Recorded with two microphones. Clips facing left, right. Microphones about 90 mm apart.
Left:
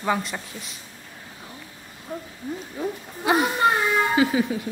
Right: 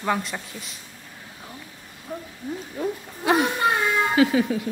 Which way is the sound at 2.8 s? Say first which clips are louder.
Right 2 dB; centre (ahead or behind).